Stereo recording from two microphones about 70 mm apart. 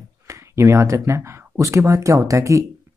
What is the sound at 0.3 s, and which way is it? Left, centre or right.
Speech, right.